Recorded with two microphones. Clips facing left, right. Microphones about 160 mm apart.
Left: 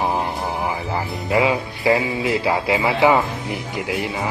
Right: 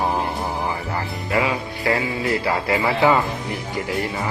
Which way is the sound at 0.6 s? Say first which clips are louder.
Left 2 dB; 20° left (ahead or behind).